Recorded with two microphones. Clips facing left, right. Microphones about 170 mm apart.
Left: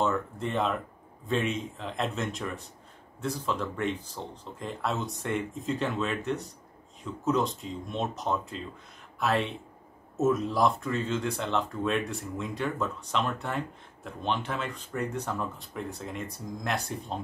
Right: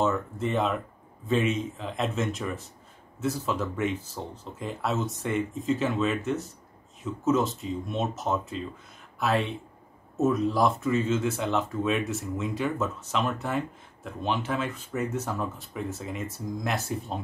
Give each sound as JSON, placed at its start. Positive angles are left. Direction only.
{"t": 0.0, "sound": "speech", "side_deg": 0}